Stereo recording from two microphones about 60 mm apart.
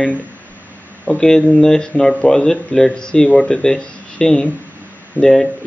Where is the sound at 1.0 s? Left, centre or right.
Centre.